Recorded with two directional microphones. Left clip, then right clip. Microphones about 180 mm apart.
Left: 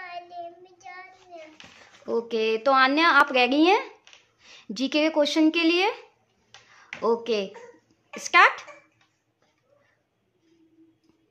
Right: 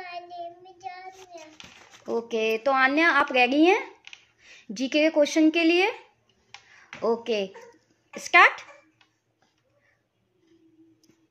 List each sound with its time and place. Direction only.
0.0 s child singing: 15° left (ahead or behind)
2.2 s speech: 5° left (ahead or behind)